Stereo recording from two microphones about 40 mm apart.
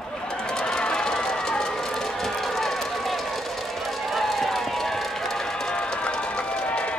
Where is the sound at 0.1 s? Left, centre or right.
Left.